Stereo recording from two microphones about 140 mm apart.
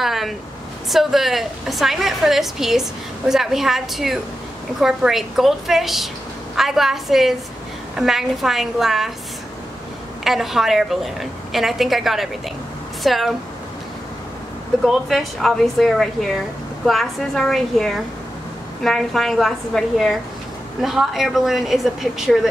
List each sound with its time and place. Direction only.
0.0 s a sound: centre (ahead or behind)
0.8 s a woman's voice: centre (ahead or behind)
10.2 s a woman's voice: centre (ahead or behind)
14.8 s a woman's voice: centre (ahead or behind)